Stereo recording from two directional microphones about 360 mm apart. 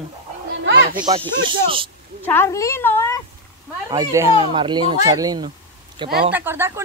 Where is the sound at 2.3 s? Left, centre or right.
Centre.